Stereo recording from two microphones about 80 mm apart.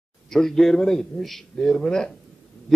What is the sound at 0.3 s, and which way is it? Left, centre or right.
A man's voice, centre.